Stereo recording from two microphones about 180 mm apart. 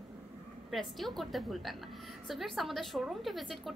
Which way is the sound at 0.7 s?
Centre (ahead or behind).